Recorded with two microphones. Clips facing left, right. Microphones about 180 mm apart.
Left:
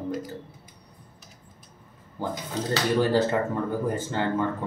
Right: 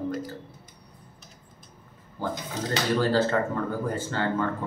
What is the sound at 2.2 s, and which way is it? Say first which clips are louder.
Speech: left 1 dB; 15° left (ahead or behind).